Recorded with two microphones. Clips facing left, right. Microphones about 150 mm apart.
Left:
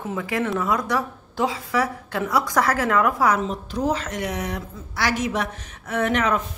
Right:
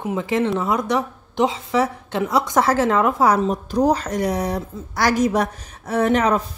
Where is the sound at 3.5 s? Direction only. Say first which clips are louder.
Right 6 dB; 40° right (ahead or behind).